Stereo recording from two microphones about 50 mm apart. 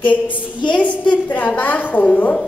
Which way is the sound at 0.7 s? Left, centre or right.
Left.